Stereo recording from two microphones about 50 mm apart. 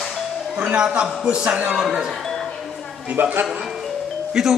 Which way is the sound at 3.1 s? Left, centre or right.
Right.